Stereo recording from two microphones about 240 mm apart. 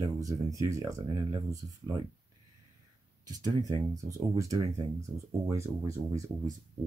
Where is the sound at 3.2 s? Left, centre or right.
Centre.